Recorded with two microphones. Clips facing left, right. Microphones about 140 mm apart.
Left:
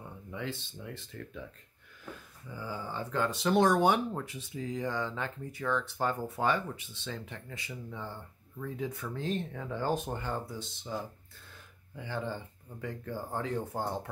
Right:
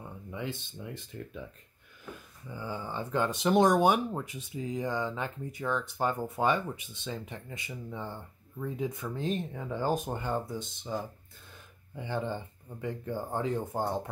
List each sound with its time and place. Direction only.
0.3 s speech: 15° right (ahead or behind)
2.5 s speech: 20° right (ahead or behind)